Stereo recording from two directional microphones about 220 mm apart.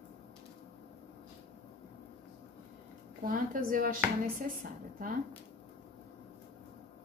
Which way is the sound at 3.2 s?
40° right (ahead or behind).